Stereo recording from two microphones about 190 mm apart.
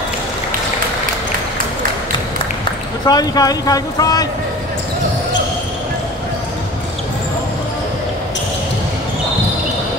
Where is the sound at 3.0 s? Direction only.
20° left (ahead or behind).